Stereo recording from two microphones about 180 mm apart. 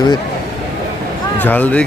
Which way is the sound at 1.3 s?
10° left (ahead or behind).